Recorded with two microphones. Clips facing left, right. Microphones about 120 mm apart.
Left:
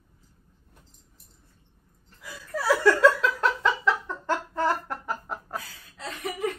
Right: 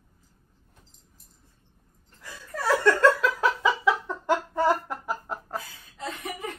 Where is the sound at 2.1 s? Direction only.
5° left (ahead or behind).